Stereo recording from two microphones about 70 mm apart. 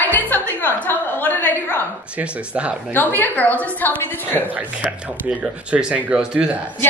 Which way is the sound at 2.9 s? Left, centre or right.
Left.